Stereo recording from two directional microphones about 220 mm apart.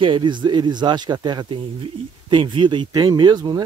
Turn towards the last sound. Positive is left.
turn(degrees=-20)  # may be behind; listen again after turning